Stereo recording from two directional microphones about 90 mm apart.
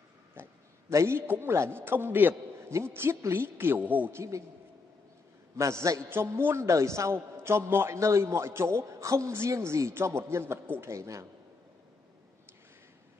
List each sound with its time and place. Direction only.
0.4 s a man's voice: 30° right (ahead or behind)
5.6 s a man's voice: 35° right (ahead or behind)